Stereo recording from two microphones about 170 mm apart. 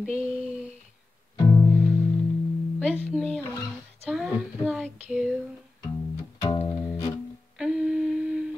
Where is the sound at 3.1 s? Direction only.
Centre (ahead or behind).